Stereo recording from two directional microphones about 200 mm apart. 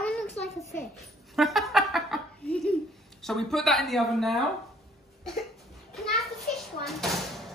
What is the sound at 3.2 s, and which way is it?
Speech, centre (ahead or behind).